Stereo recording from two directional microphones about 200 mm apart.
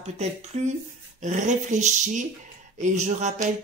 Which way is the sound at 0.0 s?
35° right (ahead or behind).